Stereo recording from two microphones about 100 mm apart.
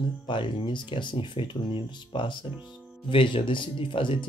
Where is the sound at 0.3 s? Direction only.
55° left (ahead or behind).